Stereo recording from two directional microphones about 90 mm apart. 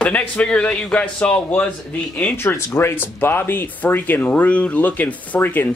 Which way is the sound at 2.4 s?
25° left (ahead or behind).